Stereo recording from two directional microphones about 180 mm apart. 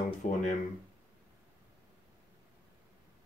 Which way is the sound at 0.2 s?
45° left (ahead or behind).